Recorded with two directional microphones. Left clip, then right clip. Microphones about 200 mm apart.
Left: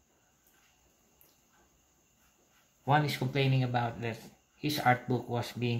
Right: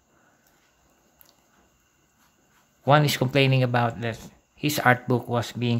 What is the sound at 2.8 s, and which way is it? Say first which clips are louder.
Speech: right 9 dB; 45° right (ahead or behind).